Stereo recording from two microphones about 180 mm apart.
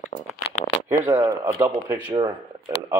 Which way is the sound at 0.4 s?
80° left.